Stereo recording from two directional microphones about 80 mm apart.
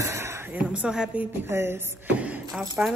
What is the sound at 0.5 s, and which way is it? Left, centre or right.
Speech, centre.